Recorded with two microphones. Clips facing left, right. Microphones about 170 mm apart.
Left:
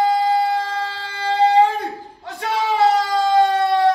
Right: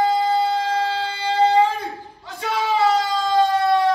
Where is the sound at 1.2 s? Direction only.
20° right (ahead or behind).